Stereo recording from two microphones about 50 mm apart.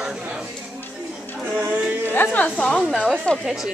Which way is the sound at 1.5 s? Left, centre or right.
Right.